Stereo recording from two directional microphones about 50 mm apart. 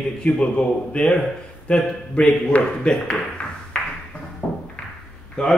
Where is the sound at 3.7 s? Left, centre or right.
Left.